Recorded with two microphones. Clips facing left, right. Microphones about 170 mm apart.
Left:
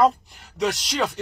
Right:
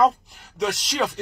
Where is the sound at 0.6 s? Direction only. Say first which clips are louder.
Left 1 dB; centre (ahead or behind).